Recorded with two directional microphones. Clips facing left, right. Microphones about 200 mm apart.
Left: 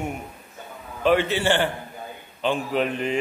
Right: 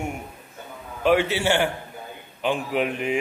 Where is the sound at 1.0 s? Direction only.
10° right (ahead or behind).